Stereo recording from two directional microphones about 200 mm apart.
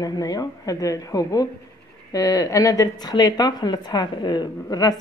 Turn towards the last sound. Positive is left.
turn(degrees=20)  # may be behind; listen again after turning